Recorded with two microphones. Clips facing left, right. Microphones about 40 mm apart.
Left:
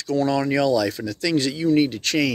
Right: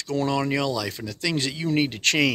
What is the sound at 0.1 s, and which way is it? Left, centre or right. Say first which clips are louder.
Speech: left 3 dB; right.